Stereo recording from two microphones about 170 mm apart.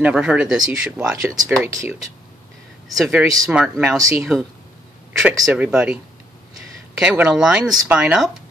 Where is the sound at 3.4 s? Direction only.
5° right (ahead or behind).